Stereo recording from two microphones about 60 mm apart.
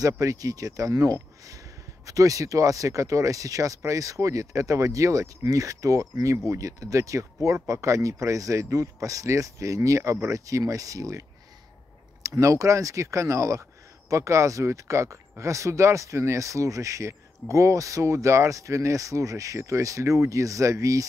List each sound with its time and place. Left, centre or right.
0.0 s speech: right